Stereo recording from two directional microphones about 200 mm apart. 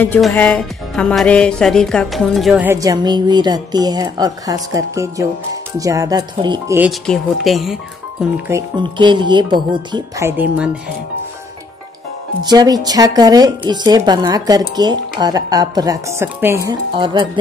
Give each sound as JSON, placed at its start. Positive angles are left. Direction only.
{"t": 0.0, "sound": "music", "side_deg": 10}
{"t": 6.8, "sound": "speech", "side_deg": 0}
{"t": 8.5, "sound": "speech", "side_deg": -20}
{"t": 12.4, "sound": "speech", "side_deg": -20}
{"t": 14.8, "sound": "music", "side_deg": -20}
{"t": 16.9, "sound": "speech", "side_deg": -25}